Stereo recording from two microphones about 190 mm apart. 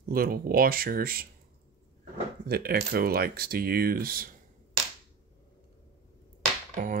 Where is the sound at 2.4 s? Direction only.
55° right (ahead or behind).